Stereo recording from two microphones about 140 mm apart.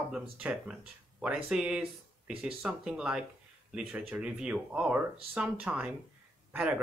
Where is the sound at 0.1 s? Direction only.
5° right (ahead or behind).